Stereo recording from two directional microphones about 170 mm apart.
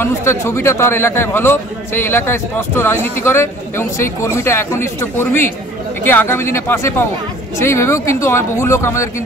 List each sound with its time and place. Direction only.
0.0 s a man's voice: 15° left (ahead or behind)